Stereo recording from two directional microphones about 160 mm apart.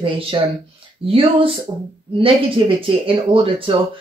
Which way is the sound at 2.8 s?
35° right (ahead or behind).